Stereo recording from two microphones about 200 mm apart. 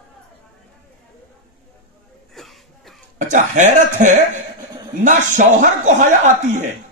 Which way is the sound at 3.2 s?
40° right (ahead or behind).